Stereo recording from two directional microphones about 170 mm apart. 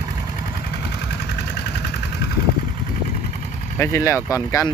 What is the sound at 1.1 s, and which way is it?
Engine, 80° left.